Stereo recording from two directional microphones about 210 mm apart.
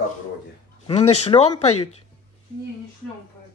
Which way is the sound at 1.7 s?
90° left.